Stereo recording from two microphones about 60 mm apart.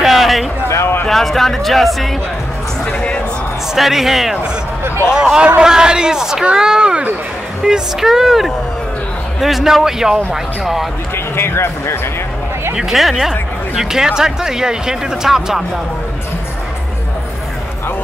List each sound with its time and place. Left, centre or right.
0.0 s a sound: centre
1.0 s speech: centre
2.8 s a sound: centre
3.7 s speech: centre
11.3 s speech: left
12.7 s speech: centre